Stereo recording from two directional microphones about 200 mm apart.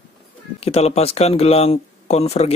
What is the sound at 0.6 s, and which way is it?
Speech, 30° left (ahead or behind).